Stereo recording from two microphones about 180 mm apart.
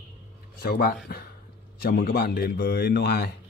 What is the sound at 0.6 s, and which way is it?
A man's voice, 60° left (ahead or behind).